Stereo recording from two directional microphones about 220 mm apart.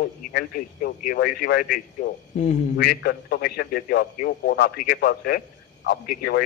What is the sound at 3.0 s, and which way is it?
A man's voice, 45° left (ahead or behind).